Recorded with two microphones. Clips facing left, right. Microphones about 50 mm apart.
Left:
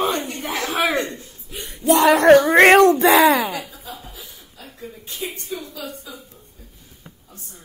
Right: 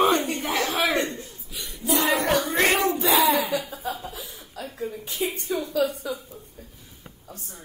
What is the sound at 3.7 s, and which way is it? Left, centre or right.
Chuckle, right.